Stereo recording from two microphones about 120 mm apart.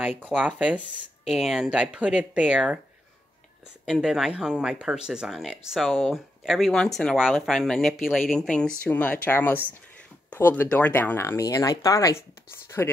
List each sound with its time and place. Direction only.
0.4 s speech: 10° right (ahead or behind)
3.8 s speech: centre (ahead or behind); by 12.9 s 20° left (ahead or behind)